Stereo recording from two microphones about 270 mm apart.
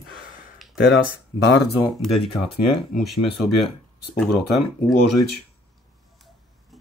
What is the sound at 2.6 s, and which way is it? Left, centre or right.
Speech, left.